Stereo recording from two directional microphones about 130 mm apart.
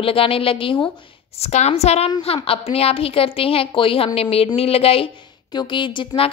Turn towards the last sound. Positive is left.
turn(degrees=40)  # may be behind; listen again after turning